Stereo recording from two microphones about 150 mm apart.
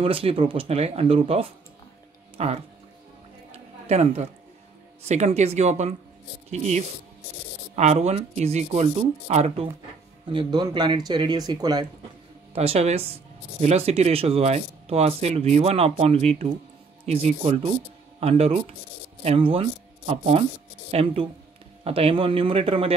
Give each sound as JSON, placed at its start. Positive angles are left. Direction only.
{"t": 0.0, "sound": "speech", "side_deg": -40}
{"t": 3.8, "sound": "speech", "side_deg": -45}
{"t": 10.2, "sound": "speech", "side_deg": -30}
{"t": 12.5, "sound": "speech", "side_deg": -45}